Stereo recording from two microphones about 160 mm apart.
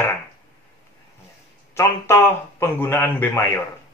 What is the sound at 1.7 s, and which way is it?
A man's voice, 15° left (ahead or behind).